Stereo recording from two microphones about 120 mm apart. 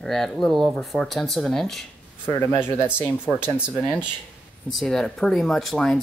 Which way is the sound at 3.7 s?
5° left (ahead or behind).